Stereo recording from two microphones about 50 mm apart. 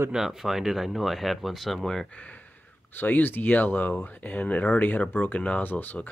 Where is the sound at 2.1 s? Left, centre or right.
Left.